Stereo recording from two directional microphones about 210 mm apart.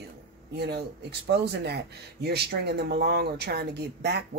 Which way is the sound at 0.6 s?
50° right (ahead or behind).